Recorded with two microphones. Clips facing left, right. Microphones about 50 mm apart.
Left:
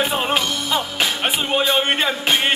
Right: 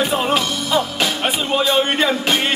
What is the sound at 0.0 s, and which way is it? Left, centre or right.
Music, centre.